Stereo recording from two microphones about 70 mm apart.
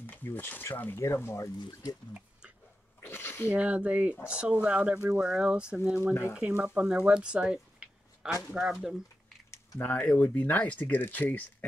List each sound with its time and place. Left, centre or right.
0.0 s speech: left
0.9 s speech: left
1.7 s speech: left
3.0 s a sound: left
3.4 s speech: centre
9.8 s speech: left